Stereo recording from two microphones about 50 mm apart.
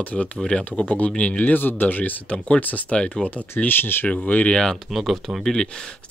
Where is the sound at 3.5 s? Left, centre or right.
Left.